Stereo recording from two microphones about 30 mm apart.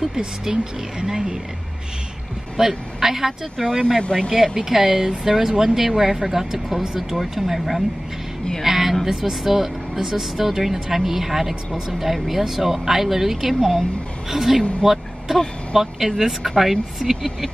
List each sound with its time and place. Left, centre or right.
0.1 s speech: right
2.5 s a woman's voice: centre
3.6 s speech: centre
4.3 s a woman's voice: centre
8.6 s a sound: centre
9.0 s a woman's voice: centre
14.3 s a woman's voice: centre
14.8 s vehicle: centre
15.7 s a woman's voice: centre